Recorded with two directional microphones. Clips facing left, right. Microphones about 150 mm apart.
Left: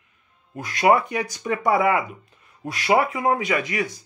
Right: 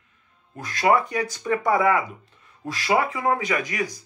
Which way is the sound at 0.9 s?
20° left (ahead or behind).